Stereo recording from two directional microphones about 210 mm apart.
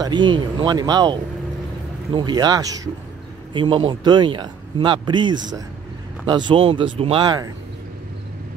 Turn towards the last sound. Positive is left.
turn(degrees=-20)  # may be behind; listen again after turning